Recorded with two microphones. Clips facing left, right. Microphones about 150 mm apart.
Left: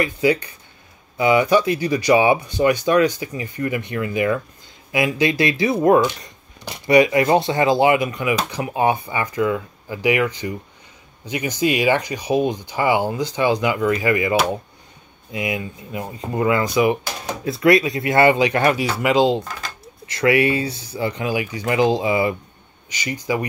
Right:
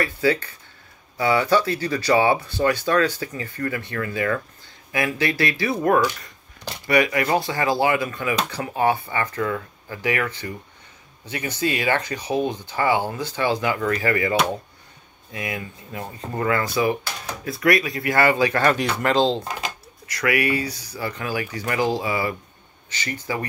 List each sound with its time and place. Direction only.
0.0 s speech: 15° left (ahead or behind)
15.3 s speech: 20° left (ahead or behind)
18.8 s speech: 5° left (ahead or behind)
20.1 s speech: 25° left (ahead or behind)